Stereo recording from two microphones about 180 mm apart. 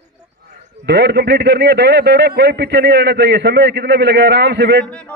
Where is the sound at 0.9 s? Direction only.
70° right (ahead or behind).